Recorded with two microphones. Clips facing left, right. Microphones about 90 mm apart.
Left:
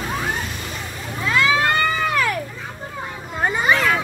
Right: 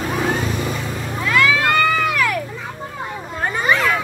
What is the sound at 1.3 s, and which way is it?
Crowd, 25° left (ahead or behind).